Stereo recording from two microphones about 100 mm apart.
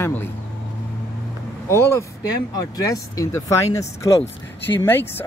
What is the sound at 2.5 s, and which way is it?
Speech, 35° left (ahead or behind).